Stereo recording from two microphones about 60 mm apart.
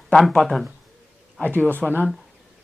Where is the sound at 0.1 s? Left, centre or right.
Centre.